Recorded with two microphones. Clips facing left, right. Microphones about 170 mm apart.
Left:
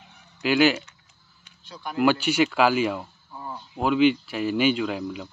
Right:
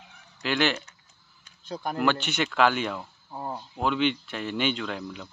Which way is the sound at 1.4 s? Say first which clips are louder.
Right 5 dB; 45° right (ahead or behind).